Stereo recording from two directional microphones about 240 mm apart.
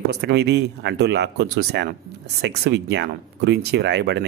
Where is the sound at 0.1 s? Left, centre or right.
Right.